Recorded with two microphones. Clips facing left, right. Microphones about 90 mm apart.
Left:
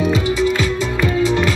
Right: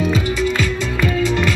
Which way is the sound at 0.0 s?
20° left (ahead or behind).